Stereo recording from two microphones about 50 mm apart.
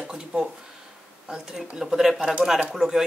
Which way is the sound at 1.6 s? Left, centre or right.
Centre.